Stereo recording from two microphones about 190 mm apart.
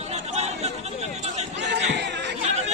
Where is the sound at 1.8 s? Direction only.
65° right (ahead or behind).